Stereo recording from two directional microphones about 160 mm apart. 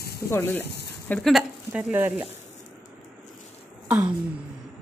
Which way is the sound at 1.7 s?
10° right (ahead or behind).